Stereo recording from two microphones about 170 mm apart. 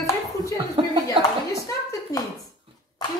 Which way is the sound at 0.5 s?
30° right (ahead or behind).